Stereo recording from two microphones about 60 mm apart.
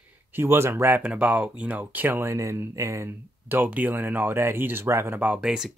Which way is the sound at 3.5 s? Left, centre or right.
Right.